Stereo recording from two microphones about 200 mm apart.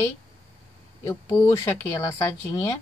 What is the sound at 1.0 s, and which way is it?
A woman's voice, 15° left (ahead or behind).